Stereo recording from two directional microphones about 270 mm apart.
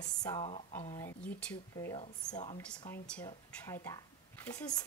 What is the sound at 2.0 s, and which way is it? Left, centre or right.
Speech, centre.